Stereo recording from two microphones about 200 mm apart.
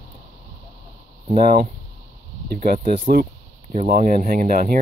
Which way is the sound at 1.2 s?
45° right (ahead or behind).